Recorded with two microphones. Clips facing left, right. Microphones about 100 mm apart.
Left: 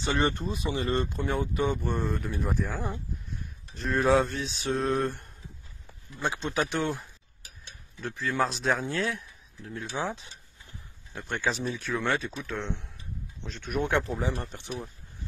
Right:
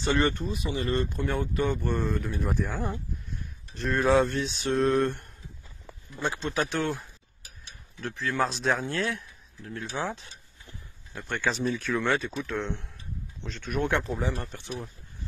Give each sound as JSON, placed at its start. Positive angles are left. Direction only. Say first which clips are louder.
{"t": 0.2, "sound": "speech", "louder": "right 1 dB", "side_deg": 30}
{"t": 1.1, "sound": "speech", "louder": "even", "side_deg": 10}
{"t": 2.0, "sound": "speech", "louder": "right 1 dB", "side_deg": 0}
{"t": 14.5, "sound": "speech", "louder": "even", "side_deg": 20}